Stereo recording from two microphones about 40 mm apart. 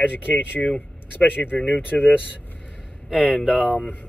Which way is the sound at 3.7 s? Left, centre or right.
Left.